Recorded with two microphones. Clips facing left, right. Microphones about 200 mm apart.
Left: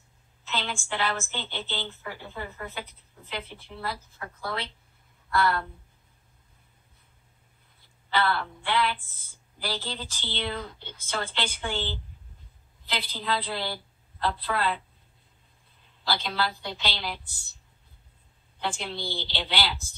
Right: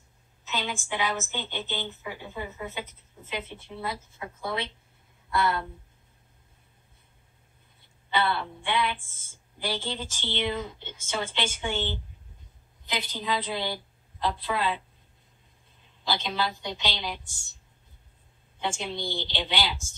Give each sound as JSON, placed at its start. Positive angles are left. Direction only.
{"t": 0.5, "sound": "a woman's voice", "side_deg": -15}
{"t": 8.3, "sound": "a woman's voice", "side_deg": -20}
{"t": 16.0, "sound": "a woman's voice", "side_deg": -20}
{"t": 18.6, "sound": "a woman's voice", "side_deg": -15}